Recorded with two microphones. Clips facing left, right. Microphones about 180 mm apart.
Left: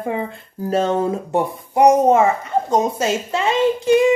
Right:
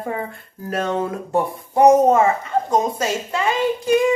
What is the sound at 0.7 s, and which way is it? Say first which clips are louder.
Speech: left 4 dB; 25° left (ahead or behind).